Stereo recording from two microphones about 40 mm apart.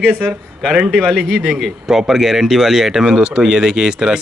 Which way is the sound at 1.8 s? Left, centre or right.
Centre.